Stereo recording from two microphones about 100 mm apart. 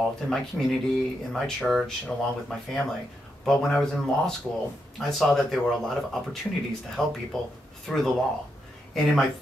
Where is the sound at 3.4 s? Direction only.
5° left (ahead or behind).